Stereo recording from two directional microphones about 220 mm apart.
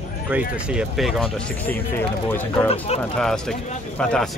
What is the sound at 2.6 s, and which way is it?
Speech, 30° left (ahead or behind).